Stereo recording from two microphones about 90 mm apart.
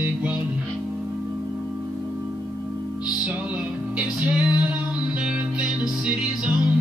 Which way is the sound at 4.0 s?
15° right (ahead or behind).